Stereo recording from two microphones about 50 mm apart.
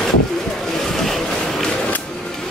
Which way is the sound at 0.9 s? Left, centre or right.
Centre.